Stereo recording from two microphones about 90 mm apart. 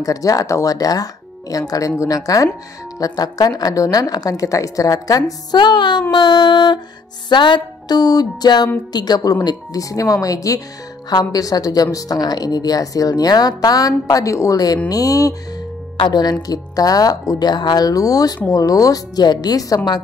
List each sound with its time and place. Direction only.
0.0 s a woman's voice: 40° left (ahead or behind); by 6.0 s 55° left (ahead or behind)
6.1 s a sound: 55° left (ahead or behind)
7.2 s a woman's voice: 60° left (ahead or behind)